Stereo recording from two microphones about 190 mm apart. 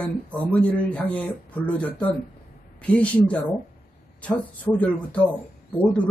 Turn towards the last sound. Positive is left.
turn(degrees=10)  # may be behind; listen again after turning